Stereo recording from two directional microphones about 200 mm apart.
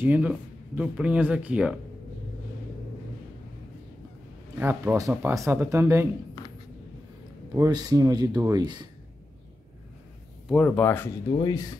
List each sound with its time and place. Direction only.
0.0 s speech: 10° right (ahead or behind)
4.6 s speech: 10° right (ahead or behind)
7.5 s speech: 15° right (ahead or behind)
10.5 s speech: 5° left (ahead or behind)
11.3 s speech: 20° left (ahead or behind)